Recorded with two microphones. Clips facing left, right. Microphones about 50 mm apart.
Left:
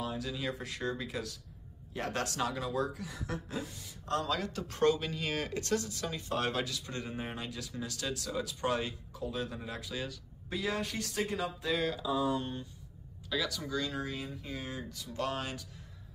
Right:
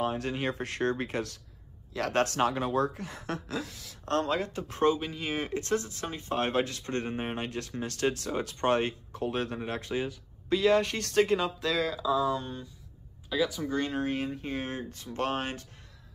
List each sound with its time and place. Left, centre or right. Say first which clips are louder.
0.0 s speech: right 6 dB; right
4.0 s speech: right 5 dB; right
4.3 s speech: right 4 dB; right
13.3 s speech: right 6 dB; centre
13.7 s speech: right 6 dB; right